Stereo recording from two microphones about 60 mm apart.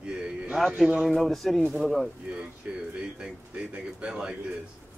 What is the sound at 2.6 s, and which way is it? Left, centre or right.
A man's voice, centre.